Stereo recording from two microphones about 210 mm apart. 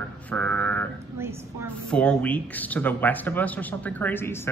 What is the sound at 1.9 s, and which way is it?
Speech, 5° left (ahead or behind).